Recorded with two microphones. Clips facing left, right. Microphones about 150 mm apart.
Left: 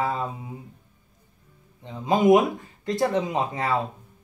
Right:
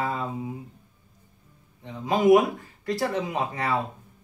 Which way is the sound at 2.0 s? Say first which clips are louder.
Left 1 dB; 20° left (ahead or behind).